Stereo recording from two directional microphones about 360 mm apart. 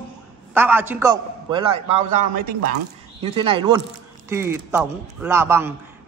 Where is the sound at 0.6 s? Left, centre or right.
Centre.